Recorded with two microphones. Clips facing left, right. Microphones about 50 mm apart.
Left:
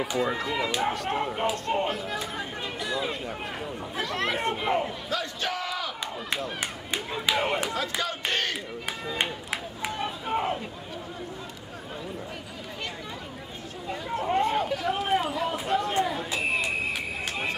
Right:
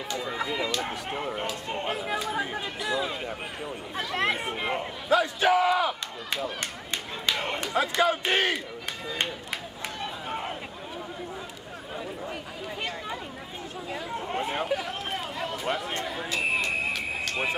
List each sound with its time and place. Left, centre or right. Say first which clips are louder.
0.0 s speech: left 4 dB; centre
1.9 s speech: right 1 dB; centre
2.1 s speech: right 3 dB; centre
5.1 s battle cry: right 11 dB; centre
6.6 s a sound: left 2 dB; centre
8.0 s speech: right 8 dB; centre
9.0 s run: left 1 dB; centre
13.8 s speech: left 5 dB; centre
14.9 s a sound: left 8 dB; centre
15.6 s speech: left 5 dB; centre
16.3 s a sound: right 2 dB; centre